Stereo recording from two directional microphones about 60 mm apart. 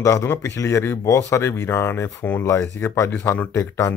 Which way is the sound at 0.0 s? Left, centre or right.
Left.